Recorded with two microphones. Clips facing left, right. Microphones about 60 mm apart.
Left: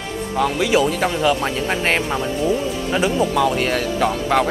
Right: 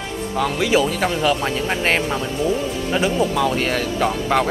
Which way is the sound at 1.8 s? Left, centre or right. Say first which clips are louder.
Right 1 dB; centre.